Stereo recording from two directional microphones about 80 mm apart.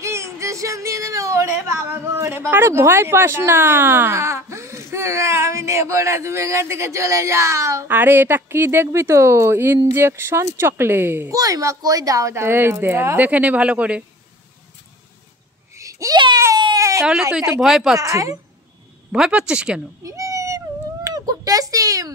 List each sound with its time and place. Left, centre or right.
0.0 s speech: right
7.9 s speech: right
11.3 s a child's voice: right
12.4 s speech: right
15.7 s babbling: right
16.7 s baby cry: right
17.6 s speech: centre
17.9 s a woman's voice: right
19.1 s speech: centre
20.0 s a sound: right